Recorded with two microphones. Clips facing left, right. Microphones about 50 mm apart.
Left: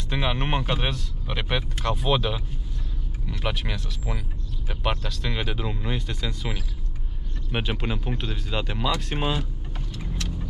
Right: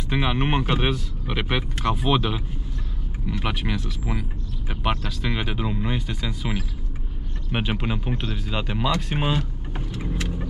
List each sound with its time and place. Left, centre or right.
0.1 s speech: centre
7.5 s speech: centre
9.8 s vehicle: right